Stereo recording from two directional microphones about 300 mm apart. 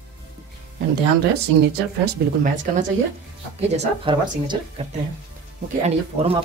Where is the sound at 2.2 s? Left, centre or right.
Right.